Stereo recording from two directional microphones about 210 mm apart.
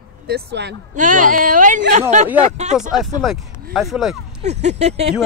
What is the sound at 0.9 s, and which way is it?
Speech, 35° right (ahead or behind).